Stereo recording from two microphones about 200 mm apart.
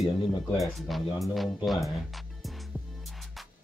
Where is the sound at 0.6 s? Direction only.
Centre (ahead or behind).